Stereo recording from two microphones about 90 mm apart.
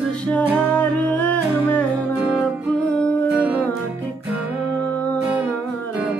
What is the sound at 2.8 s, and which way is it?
Music, 20° left (ahead or behind).